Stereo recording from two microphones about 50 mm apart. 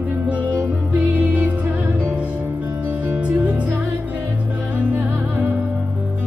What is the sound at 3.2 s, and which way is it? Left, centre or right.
Music, right.